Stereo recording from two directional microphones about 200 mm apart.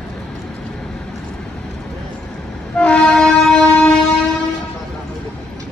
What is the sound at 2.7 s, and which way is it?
Train, 5° left (ahead or behind).